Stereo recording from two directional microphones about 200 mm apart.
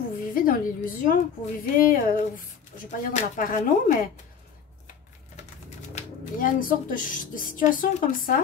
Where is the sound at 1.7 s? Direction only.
45° left (ahead or behind).